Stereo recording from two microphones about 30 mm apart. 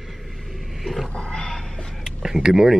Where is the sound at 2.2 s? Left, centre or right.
Centre.